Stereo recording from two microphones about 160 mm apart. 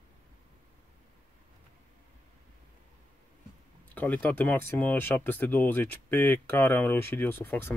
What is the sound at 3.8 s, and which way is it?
Speech, 10° left (ahead or behind).